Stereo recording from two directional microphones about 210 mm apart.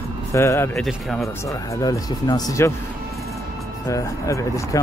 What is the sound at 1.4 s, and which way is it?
Speech, 15° left (ahead or behind).